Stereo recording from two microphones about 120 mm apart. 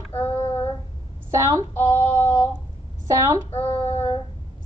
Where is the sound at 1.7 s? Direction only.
20° left (ahead or behind).